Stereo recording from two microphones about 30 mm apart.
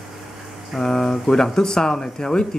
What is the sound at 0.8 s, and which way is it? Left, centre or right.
Speech, centre.